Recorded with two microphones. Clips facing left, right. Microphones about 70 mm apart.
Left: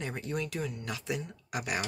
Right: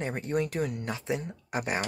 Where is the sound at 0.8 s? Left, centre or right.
Right.